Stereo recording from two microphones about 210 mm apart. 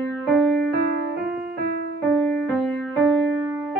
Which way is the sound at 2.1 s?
5° left (ahead or behind).